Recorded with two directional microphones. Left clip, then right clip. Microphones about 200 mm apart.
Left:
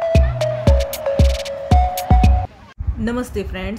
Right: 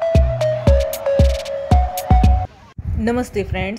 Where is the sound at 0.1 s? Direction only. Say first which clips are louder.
Right 1 dB; centre (ahead or behind).